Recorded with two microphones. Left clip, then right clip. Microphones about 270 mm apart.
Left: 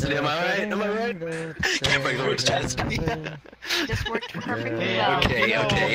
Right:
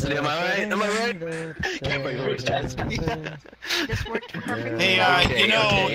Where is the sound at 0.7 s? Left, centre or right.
Centre.